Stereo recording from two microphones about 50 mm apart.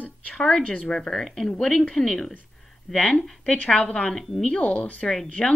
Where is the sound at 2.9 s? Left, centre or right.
Left.